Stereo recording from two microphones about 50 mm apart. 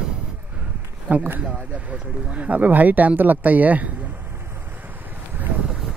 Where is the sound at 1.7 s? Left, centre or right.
Right.